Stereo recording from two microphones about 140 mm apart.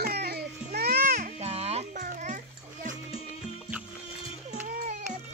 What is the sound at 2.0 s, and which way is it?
Music, 70° right (ahead or behind).